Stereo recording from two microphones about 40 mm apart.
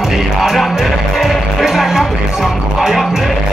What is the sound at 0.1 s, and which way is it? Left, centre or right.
Music, centre.